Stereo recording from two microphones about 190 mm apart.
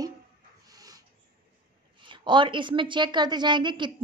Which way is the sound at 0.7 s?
20° right (ahead or behind).